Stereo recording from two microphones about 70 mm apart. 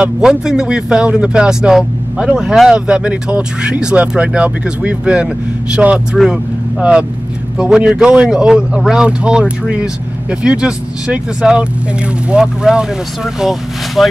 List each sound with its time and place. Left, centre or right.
0.0 s speech: centre
2.7 s speech: centre
6.1 s speech: centre
6.8 s speech: centre